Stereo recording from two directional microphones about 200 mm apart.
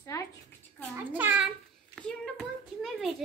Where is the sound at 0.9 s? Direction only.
10° right (ahead or behind).